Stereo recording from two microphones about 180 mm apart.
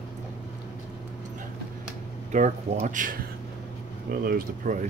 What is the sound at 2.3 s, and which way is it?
Speech, 45° right (ahead or behind).